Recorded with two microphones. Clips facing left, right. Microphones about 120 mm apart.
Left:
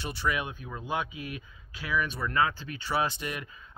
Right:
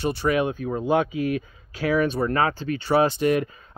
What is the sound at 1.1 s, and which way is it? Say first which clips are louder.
Speech: right 14 dB; 75° right (ahead or behind).